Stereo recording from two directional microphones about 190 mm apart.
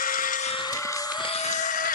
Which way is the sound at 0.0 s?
45° left (ahead or behind).